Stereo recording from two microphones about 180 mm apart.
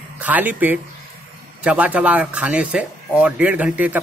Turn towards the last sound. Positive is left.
turn(degrees=-10)  # may be behind; listen again after turning